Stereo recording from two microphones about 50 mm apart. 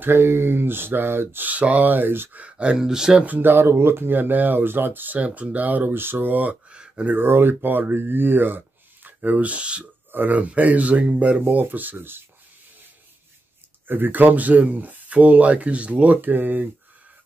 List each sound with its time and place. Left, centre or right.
0.0 s speech: right
1.4 s speech: right
2.5 s speech: centre
3.3 s speech: right
5.2 s speech: right
5.9 s speech: right
6.7 s a sound: right
7.2 s speech: right
10.1 s speech: right
13.8 s speech: right